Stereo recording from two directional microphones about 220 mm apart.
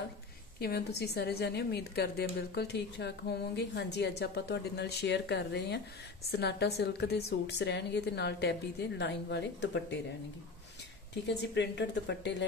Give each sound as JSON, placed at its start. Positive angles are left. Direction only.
{"t": 0.6, "sound": "a woman's voice", "side_deg": 45}
{"t": 11.2, "sound": "a woman's voice", "side_deg": 50}